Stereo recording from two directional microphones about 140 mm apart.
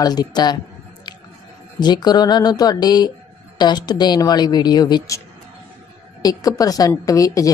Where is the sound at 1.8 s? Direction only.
30° left (ahead or behind).